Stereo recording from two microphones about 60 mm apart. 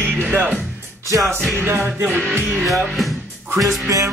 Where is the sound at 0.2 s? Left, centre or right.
Right.